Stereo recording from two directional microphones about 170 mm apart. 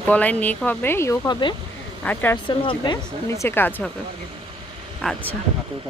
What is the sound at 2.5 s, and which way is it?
Speech, 30° left (ahead or behind).